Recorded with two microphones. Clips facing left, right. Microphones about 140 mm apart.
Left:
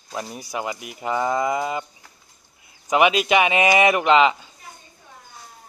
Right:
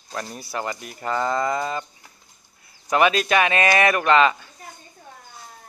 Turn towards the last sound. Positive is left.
turn(degrees=15)  # may be behind; listen again after turning